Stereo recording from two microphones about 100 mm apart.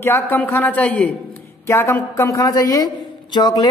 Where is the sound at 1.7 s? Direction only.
25° left (ahead or behind); by 3.6 s 45° left (ahead or behind).